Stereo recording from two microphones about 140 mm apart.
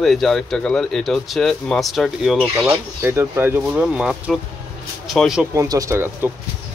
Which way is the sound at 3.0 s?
15° right (ahead or behind).